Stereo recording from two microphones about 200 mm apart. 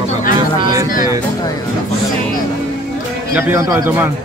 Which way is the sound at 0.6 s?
20° right (ahead or behind).